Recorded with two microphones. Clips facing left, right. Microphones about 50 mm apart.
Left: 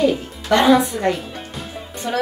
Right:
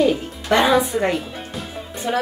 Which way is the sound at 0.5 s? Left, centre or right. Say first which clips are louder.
Left 2 dB; centre.